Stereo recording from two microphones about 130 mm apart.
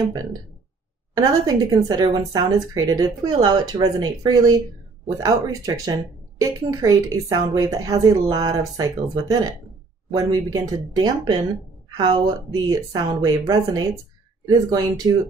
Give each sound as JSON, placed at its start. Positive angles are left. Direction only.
{"t": 1.1, "sound": "a woman's voice", "side_deg": -30}